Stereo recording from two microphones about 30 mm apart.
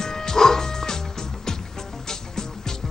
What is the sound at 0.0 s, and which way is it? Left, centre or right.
Music, centre.